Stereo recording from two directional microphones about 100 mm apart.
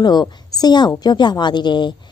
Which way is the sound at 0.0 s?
45° left (ahead or behind).